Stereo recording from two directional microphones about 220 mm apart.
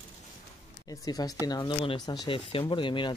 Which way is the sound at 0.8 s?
15° left (ahead or behind).